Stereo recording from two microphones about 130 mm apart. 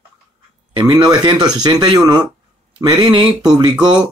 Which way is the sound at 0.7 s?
30° right (ahead or behind).